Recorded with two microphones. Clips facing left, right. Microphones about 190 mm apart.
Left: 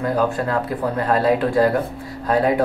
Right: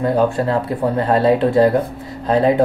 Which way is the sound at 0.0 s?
25° right (ahead or behind).